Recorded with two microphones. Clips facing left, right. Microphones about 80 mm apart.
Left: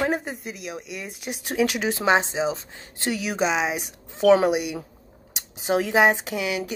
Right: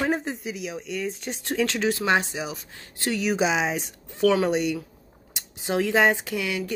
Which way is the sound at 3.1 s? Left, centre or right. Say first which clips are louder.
Right 1 dB; centre.